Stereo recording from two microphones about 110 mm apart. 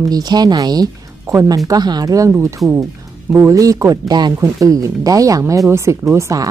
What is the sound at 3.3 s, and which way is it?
Speech, 30° right (ahead or behind).